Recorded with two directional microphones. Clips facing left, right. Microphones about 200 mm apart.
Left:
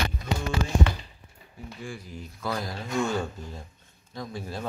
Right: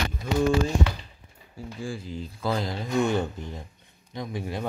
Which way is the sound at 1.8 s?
30° right (ahead or behind).